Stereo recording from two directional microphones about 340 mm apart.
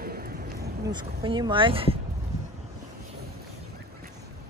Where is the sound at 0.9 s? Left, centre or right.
Centre.